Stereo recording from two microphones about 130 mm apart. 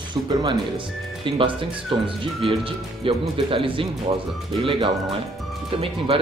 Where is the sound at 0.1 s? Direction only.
35° right (ahead or behind).